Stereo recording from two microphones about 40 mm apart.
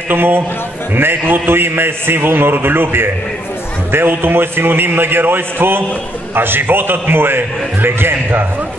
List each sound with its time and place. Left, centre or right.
0.1 s a man's voice: right